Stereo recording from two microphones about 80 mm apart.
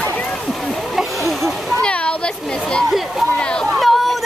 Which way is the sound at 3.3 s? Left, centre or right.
Centre.